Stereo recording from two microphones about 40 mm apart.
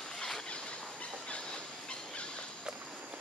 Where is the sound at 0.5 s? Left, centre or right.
Left.